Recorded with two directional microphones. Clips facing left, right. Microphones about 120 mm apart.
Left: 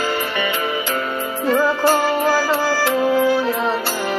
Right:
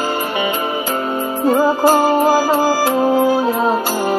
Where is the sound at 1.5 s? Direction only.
40° right (ahead or behind).